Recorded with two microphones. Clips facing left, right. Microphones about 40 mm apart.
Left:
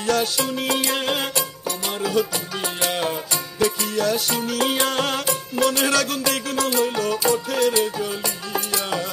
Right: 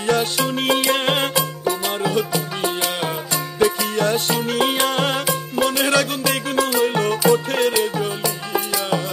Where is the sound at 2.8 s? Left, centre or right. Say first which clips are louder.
Even; centre.